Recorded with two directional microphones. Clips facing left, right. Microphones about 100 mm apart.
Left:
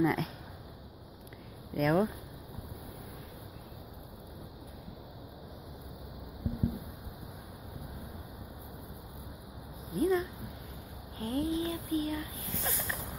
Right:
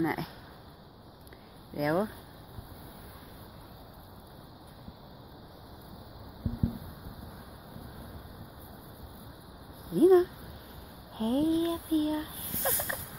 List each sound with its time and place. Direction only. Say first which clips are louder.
0.0 s speech: left 2 dB; centre (ahead or behind)
1.7 s speech: left 1 dB; 10° right (ahead or behind)
9.9 s speech: right 9 dB; 35° right (ahead or behind)